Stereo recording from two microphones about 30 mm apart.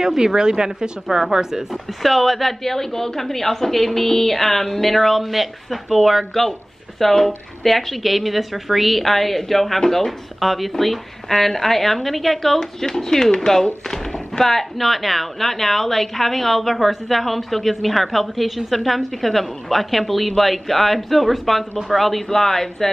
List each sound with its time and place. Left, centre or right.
0.0 s speech: centre
1.7 s a woman's voice: centre
2.6 s a woman's voice: centre
12.5 s speech: centre
13.8 s a sound: left
14.4 s a woman's voice: centre
22.3 s a woman's voice: centre